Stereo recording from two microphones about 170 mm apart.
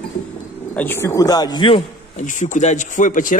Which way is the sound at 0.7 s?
15° left (ahead or behind).